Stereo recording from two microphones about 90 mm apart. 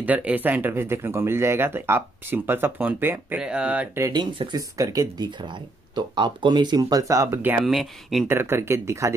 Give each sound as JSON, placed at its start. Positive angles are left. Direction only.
{"t": 0.0, "sound": "speech", "side_deg": -15}
{"t": 3.3, "sound": "speech", "side_deg": -10}
{"t": 4.5, "sound": "speech", "side_deg": -45}
{"t": 7.6, "sound": "speech", "side_deg": 0}
{"t": 8.3, "sound": "speech", "side_deg": -25}